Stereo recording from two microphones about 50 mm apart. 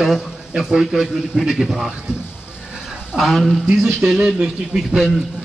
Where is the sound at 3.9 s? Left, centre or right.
Centre.